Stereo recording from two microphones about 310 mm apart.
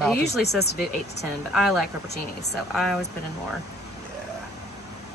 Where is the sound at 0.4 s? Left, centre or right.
Left.